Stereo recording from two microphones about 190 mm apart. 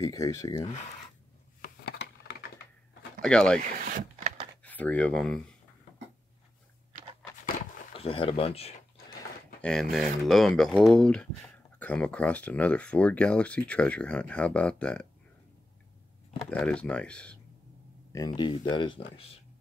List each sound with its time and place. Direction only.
0.0 s speech: 15° left (ahead or behind)
1.9 s typewriter: 55° left (ahead or behind)
3.2 s speech: 5° left (ahead or behind)
3.5 s speech: 45° right (ahead or behind)
4.6 s speech: 10° left (ahead or behind)
7.9 s speech: 30° left (ahead or behind)
9.6 s speech: 5° left (ahead or behind)
16.4 s speech: 5° left (ahead or behind)
18.1 s speech: 20° left (ahead or behind)